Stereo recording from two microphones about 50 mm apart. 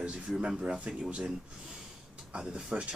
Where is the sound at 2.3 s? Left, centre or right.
Centre.